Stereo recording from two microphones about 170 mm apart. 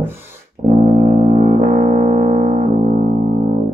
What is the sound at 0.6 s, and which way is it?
Music, 50° right (ahead or behind).